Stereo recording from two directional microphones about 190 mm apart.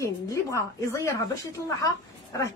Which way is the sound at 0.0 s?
15° left (ahead or behind).